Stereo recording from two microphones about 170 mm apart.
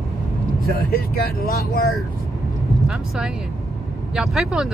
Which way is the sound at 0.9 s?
60° left (ahead or behind).